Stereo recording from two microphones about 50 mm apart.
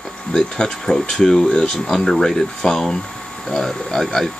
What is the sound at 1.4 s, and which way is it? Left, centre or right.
Speech, centre.